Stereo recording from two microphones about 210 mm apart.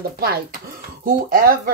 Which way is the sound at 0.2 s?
45° right (ahead or behind).